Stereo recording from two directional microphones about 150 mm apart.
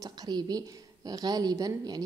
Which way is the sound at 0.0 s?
25° right (ahead or behind).